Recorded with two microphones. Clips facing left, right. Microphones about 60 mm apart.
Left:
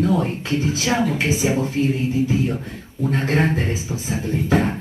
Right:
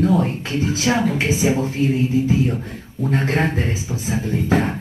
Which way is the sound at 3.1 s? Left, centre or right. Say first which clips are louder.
Right 1 dB; right.